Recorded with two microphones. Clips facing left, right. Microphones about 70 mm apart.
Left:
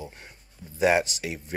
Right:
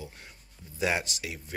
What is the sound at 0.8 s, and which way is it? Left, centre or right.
Speech, left.